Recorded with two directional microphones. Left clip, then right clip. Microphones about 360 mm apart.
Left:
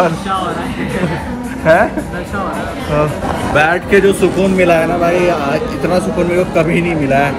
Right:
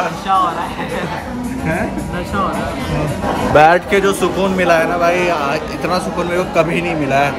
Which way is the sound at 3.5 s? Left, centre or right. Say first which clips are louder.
Right 3 dB; right.